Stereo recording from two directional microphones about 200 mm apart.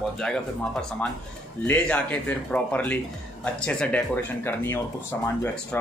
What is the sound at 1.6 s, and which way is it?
Speech, 5° left (ahead or behind).